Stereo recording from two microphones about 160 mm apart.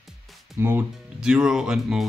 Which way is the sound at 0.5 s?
15° right (ahead or behind).